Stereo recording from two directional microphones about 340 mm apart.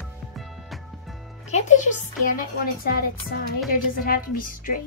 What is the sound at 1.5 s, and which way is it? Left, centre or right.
Speech, left.